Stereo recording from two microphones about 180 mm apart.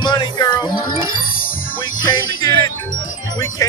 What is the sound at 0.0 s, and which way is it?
Music, 20° left (ahead or behind).